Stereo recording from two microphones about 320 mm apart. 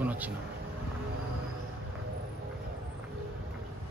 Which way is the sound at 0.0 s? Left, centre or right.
Centre.